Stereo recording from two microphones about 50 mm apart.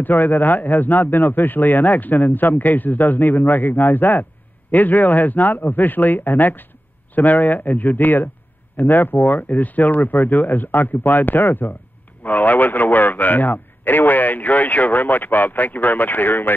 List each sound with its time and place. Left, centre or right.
0.0 s speech: left